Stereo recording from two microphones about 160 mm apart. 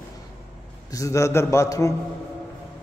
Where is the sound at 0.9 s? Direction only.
20° left (ahead or behind).